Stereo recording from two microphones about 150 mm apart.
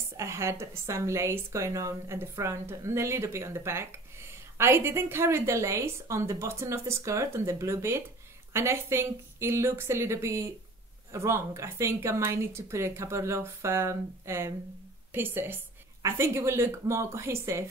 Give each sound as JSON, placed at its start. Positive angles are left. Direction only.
{"t": 0.2, "sound": "speech", "side_deg": -20}